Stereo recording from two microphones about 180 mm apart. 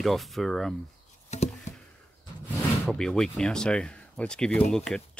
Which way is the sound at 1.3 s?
40° left (ahead or behind).